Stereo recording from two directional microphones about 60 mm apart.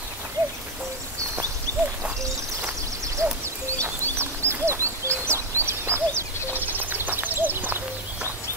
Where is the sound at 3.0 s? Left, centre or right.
Right.